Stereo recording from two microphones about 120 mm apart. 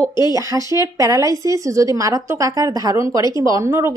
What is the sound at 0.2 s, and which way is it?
Speech, 30° right (ahead or behind).